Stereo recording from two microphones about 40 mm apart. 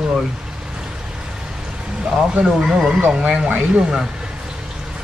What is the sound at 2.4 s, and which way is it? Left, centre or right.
Speech, centre.